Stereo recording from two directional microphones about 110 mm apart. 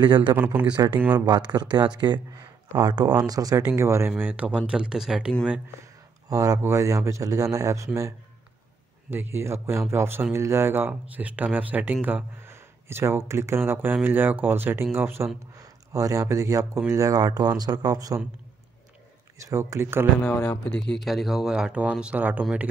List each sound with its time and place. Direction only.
0.0 s speech: 45° right (ahead or behind)
0.3 s speech: 15° right (ahead or behind)
0.7 s speech: 40° right (ahead or behind)
0.9 s speech: 15° right (ahead or behind)
1.2 s speech: 40° right (ahead or behind)
3.6 s speech: 25° right (ahead or behind); by 5.3 s 5° right (ahead or behind)
6.2 s speech: 35° right (ahead or behind)
9.1 s speech: 20° right (ahead or behind)
15.5 s speech: 30° right (ahead or behind)
19.3 s speech: 30° right (ahead or behind)
20.2 s speech: 15° left (ahead or behind)
21.0 s speech: centre (ahead or behind)